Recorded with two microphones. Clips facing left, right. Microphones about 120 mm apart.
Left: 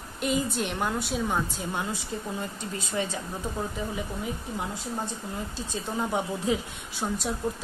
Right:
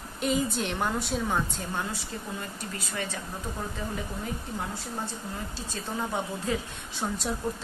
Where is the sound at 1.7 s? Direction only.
20° left (ahead or behind).